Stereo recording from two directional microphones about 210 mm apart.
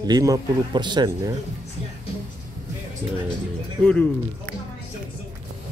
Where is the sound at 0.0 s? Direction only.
20° right (ahead or behind).